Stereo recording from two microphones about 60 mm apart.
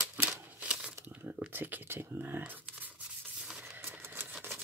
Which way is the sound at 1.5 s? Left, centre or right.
Right.